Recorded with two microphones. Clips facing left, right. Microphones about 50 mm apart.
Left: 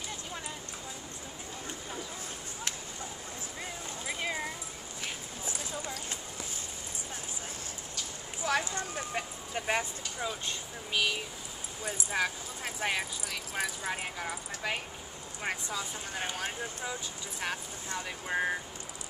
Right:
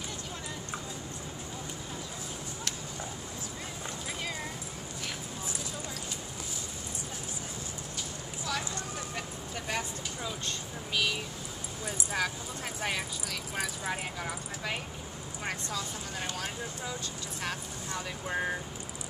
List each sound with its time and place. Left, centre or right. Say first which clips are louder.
8.5 s vehicle: left 5 dB; left
10.2 s vehicle: left 3 dB; centre
11.8 s speech: left 1 dB; centre